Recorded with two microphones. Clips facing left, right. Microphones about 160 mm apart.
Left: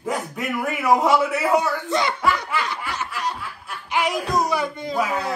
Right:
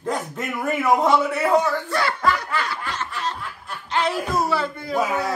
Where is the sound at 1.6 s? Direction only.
20° left (ahead or behind).